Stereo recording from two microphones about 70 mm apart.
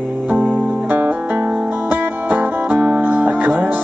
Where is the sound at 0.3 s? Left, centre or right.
Right.